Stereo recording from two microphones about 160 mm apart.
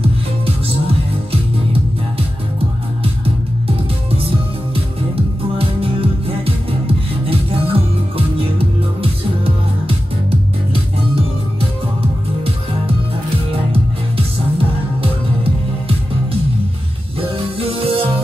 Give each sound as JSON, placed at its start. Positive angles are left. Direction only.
{"t": 1.3, "sound": "music", "side_deg": -35}
{"t": 5.6, "sound": "music", "side_deg": -35}
{"t": 9.4, "sound": "music", "side_deg": -35}
{"t": 14.1, "sound": "music", "side_deg": -35}
{"t": 17.2, "sound": "music", "side_deg": -35}